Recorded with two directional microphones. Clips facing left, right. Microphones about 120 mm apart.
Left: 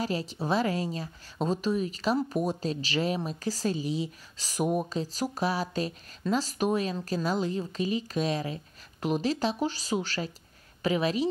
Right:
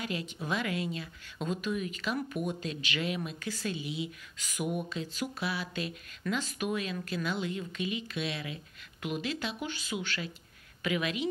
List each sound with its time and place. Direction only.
0.0 s a woman's voice: 35° left (ahead or behind)